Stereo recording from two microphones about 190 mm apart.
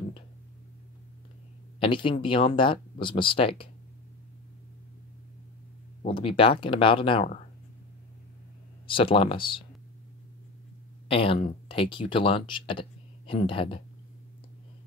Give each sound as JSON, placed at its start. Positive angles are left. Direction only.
{"t": 1.8, "sound": "speech", "side_deg": 25}
{"t": 6.0, "sound": "speech", "side_deg": 30}
{"t": 8.8, "sound": "speech", "side_deg": 25}
{"t": 11.1, "sound": "speech", "side_deg": 30}